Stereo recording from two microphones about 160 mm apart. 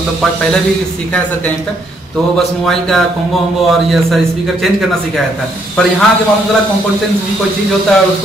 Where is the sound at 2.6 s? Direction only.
Centre (ahead or behind).